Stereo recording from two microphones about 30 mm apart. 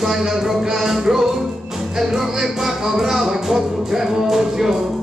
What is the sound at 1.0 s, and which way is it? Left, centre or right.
Music, right.